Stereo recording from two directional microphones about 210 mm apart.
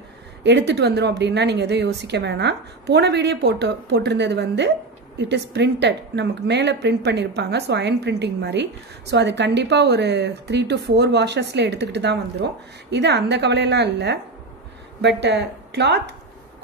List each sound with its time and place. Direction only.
0.4 s a woman's voice: 55° right (ahead or behind)